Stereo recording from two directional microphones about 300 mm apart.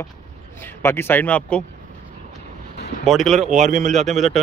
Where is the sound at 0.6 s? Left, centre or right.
Centre.